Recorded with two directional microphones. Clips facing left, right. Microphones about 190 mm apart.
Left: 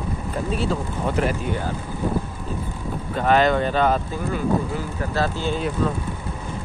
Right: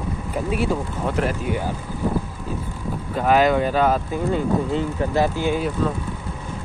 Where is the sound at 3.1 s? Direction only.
5° right (ahead or behind).